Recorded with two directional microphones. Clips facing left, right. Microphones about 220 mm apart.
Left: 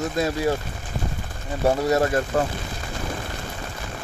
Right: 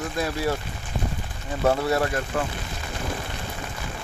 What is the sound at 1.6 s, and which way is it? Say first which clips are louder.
Speech: left 2 dB; 20° left (ahead or behind).